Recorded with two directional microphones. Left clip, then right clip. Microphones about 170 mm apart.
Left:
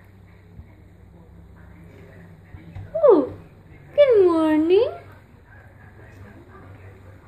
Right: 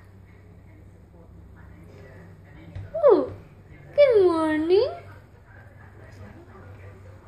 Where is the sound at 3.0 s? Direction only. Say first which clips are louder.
Left 3 dB; 25° left (ahead or behind).